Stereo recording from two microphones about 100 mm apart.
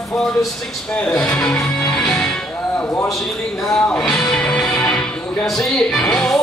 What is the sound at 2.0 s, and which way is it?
Music, 10° left (ahead or behind).